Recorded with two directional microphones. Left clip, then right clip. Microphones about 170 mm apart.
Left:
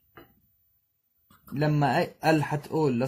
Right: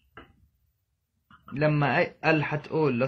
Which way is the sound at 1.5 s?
65° left (ahead or behind).